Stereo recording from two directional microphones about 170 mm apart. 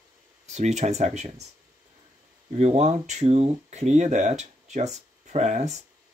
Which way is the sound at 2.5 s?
40° right (ahead or behind).